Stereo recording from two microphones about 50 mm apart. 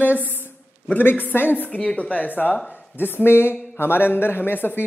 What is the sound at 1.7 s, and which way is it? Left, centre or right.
Speech, left.